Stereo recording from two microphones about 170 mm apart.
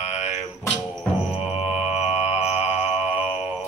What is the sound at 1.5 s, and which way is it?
Mantra, 35° left (ahead or behind).